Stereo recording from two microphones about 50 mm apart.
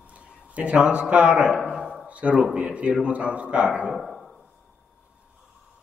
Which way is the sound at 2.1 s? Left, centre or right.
Right.